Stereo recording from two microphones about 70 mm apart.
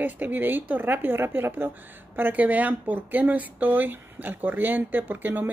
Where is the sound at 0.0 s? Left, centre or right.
Right.